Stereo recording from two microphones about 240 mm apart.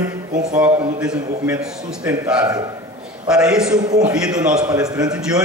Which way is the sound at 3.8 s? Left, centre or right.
Centre.